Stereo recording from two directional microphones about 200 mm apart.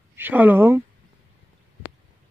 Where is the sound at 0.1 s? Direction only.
10° right (ahead or behind).